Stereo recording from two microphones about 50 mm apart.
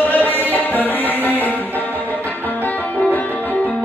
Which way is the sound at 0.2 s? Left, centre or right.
Left.